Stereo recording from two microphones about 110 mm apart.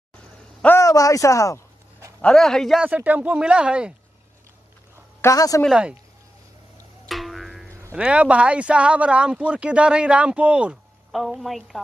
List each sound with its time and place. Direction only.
0.7 s speech: 30° left (ahead or behind)
2.2 s speech: 5° left (ahead or behind)
2.8 s speech: 15° right (ahead or behind)
5.2 s speech: 30° left (ahead or behind)
5.7 s speech: 10° right (ahead or behind)
7.1 s music: centre (ahead or behind)
7.9 s speech: 10° right (ahead or behind)
11.1 s speech: centre (ahead or behind)